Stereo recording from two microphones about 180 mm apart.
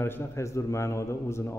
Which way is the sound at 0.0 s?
15° left (ahead or behind).